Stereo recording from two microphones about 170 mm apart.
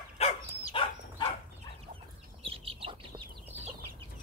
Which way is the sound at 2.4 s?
30° right (ahead or behind).